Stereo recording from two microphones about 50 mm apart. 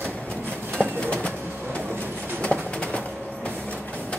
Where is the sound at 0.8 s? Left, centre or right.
Centre.